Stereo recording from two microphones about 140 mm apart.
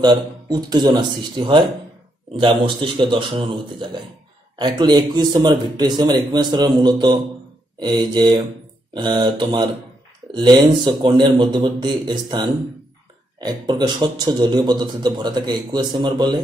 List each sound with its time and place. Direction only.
0.0 s a man's voice: 30° right (ahead or behind)